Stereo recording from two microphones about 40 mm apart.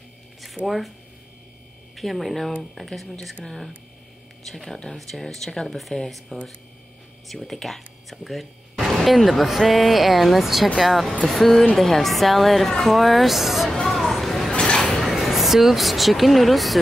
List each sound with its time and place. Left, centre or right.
0.7 s a woman's voice: centre
2.0 s a woman's voice: centre
4.5 s a woman's voice: centre
13.8 s a sound: centre
14.5 s a sound: left
15.0 s speech: centre